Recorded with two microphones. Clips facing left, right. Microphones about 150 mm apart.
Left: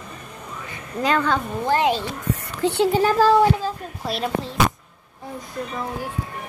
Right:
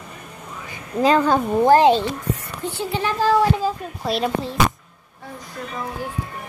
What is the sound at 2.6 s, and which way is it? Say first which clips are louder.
Speech: left 9 dB; 70° left (ahead or behind).